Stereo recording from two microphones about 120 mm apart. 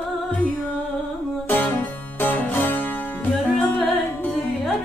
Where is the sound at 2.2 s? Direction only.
15° left (ahead or behind).